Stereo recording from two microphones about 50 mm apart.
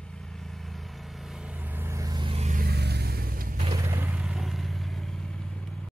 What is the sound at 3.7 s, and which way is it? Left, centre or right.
Vehicle, right.